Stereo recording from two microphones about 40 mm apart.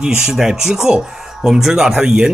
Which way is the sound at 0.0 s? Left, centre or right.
Centre.